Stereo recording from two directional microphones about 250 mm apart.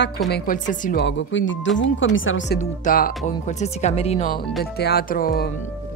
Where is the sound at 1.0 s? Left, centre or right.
Left.